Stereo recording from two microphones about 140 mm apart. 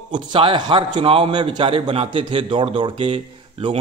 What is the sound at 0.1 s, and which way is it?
A man's voice, 35° right (ahead or behind).